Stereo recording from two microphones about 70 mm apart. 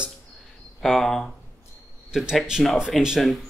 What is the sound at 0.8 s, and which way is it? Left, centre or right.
Speech, centre.